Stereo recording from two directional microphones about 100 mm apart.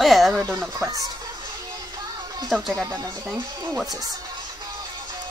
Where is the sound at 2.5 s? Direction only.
5° right (ahead or behind).